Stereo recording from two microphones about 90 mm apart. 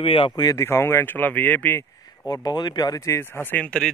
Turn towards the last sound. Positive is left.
turn(degrees=10)  # may be behind; listen again after turning